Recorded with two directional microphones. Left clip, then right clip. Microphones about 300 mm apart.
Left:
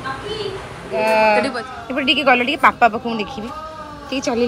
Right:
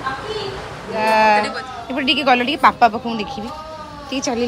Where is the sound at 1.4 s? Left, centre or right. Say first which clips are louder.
Left 1 dB; centre.